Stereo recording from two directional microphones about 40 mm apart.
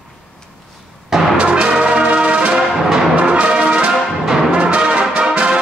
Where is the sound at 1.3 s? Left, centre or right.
Right.